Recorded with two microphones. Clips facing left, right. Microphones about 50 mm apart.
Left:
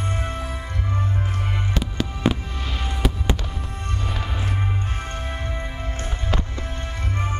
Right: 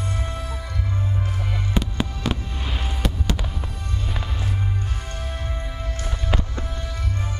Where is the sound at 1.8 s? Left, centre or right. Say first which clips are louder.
Right 5 dB; centre.